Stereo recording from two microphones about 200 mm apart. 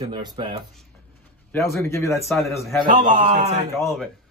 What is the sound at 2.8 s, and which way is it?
Speech, 40° right (ahead or behind).